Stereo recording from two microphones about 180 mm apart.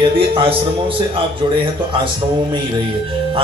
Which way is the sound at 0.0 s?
30° right (ahead or behind).